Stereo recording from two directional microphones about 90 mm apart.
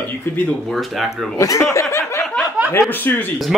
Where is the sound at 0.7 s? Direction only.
Centre (ahead or behind).